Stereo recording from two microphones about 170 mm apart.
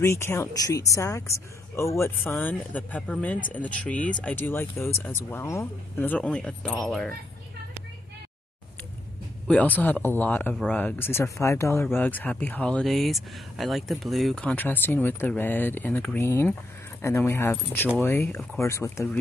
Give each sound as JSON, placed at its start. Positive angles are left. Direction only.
{"t": 0.0, "sound": "speech", "side_deg": 15}
{"t": 9.5, "sound": "speech", "side_deg": 10}